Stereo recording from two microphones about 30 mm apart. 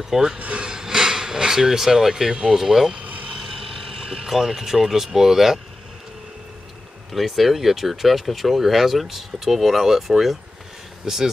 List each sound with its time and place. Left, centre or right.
0.1 s speech: centre
0.6 s a sound: right
2.5 s speech: centre
3.0 s vehicle: right
3.3 s vehicle: centre
4.0 s vehicle: right
4.3 s speech: centre
7.2 s speech: centre
11.1 s speech: right